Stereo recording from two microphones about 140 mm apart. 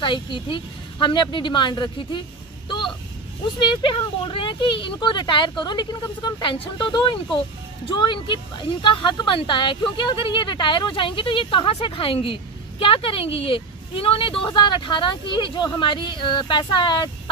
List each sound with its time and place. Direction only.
0.0 s speech: 35° left (ahead or behind)
3.5 s speech: 35° left (ahead or behind)